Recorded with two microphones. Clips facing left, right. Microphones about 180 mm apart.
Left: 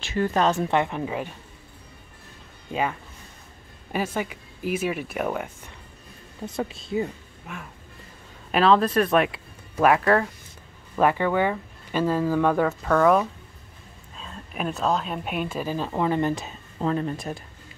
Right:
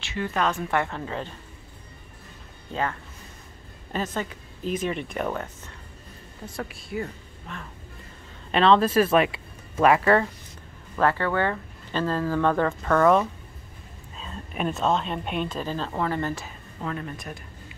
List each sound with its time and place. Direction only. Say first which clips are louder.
0.0 s a woman's voice: left 4 dB; 40° left (ahead or behind)
0.7 s speech: left 3 dB; 15° left (ahead or behind)
2.7 s speech: left 2 dB; 15° left (ahead or behind)
6.4 s speech: left 5 dB; 20° left (ahead or behind)
7.5 s speech: left 1 dB; 10° left (ahead or behind)
11.0 s speech: left 2 dB; 15° left (ahead or behind)
16.8 s a woman's voice: left 7 dB; 30° left (ahead or behind)